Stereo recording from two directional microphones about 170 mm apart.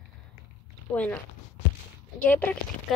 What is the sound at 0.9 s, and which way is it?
Speech, 10° left (ahead or behind).